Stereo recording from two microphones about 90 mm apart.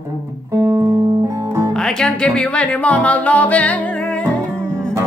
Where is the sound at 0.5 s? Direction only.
35° right (ahead or behind).